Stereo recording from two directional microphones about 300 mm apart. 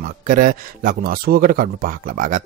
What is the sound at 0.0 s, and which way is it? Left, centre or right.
Speech, right.